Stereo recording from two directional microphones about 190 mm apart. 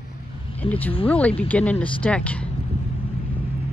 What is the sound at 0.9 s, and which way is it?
Speech, 30° left (ahead or behind).